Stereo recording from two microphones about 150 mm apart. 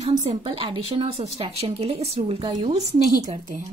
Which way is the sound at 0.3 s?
35° right (ahead or behind).